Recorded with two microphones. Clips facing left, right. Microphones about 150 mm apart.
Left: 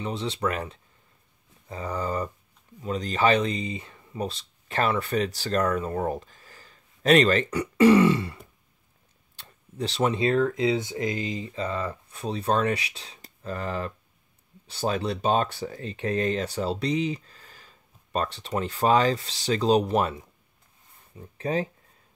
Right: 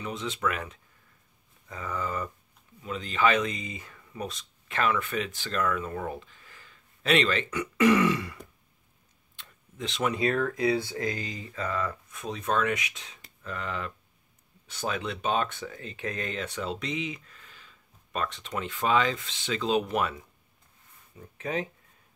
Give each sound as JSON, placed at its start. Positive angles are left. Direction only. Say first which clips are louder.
{"t": 0.0, "sound": "speech", "louder": "left 3 dB", "side_deg": 30}
{"t": 9.4, "sound": "speech", "louder": "left 6 dB", "side_deg": 35}